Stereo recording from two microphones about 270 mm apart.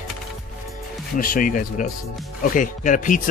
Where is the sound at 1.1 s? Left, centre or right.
Left.